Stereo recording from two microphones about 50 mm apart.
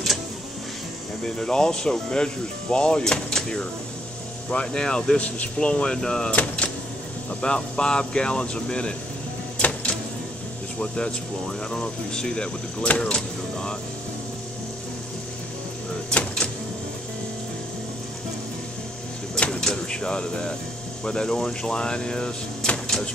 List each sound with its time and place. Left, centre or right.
1.2 s speech: centre
6.4 s vehicle: left
7.4 s speech: centre
9.6 s a sound: left
10.8 s speech: centre
16.1 s speech: centre
19.4 s door: centre
21.0 s speech: centre